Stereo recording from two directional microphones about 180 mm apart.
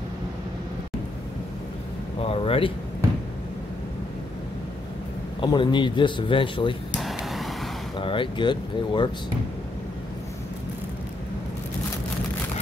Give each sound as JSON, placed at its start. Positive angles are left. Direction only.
{"t": 2.2, "sound": "speech", "side_deg": 30}
{"t": 5.4, "sound": "speech", "side_deg": 25}
{"t": 7.0, "sound": "vehicle", "side_deg": 0}
{"t": 8.0, "sound": "speech", "side_deg": 30}